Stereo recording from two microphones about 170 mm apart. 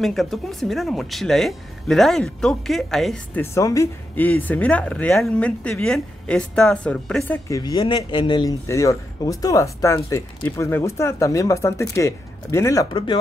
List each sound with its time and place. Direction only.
0.0 s speech: centre (ahead or behind)
3.3 s speech: 15° left (ahead or behind)
7.4 s speech: 20° left (ahead or behind)
12.9 s speech: 30° left (ahead or behind)